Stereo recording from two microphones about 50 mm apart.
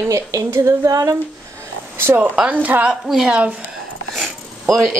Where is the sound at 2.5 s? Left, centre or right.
Right.